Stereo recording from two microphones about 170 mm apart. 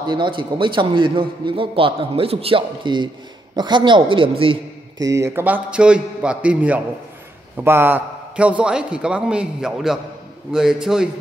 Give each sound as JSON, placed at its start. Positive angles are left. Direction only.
{"t": 0.0, "sound": "a man's voice", "side_deg": -30}
{"t": 5.0, "sound": "a man's voice", "side_deg": -15}